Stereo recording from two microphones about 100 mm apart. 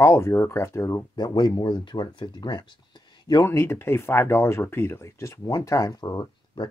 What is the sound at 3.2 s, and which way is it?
Speech, 40° left (ahead or behind).